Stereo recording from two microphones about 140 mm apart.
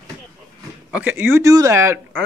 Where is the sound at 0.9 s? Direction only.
15° right (ahead or behind).